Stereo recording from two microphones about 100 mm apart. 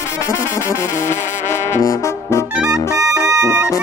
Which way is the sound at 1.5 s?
30° left (ahead or behind).